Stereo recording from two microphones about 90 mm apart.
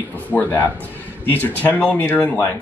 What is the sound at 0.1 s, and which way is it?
A man's voice, 20° left (ahead or behind).